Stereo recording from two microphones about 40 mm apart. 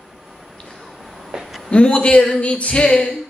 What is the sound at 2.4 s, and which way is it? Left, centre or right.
Female singing, left.